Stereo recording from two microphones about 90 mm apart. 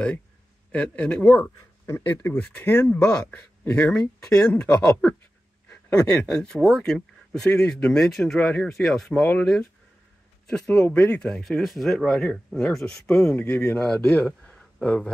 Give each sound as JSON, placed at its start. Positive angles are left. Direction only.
{"t": 0.7, "sound": "speech", "side_deg": 15}
{"t": 8.7, "sound": "speech", "side_deg": 5}
{"t": 9.1, "sound": "speech", "side_deg": 15}
{"t": 10.5, "sound": "speech", "side_deg": 15}